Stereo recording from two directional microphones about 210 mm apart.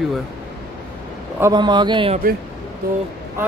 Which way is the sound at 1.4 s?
20° right (ahead or behind).